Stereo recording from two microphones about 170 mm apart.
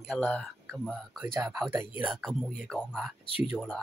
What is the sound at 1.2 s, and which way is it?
Mantra, 15° right (ahead or behind).